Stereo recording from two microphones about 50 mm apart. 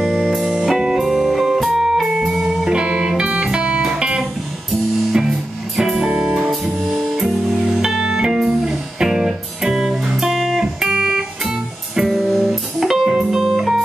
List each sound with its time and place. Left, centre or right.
0.0 s music: centre
2.4 s music: centre
5.8 s music: centre
7.6 s music: centre
11.4 s music: centre